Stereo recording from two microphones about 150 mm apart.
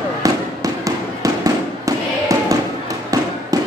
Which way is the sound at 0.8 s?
25° right (ahead or behind).